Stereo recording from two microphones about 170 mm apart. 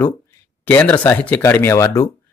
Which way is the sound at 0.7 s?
10° left (ahead or behind).